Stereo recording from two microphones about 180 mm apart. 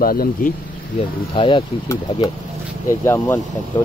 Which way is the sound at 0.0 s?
55° left (ahead or behind).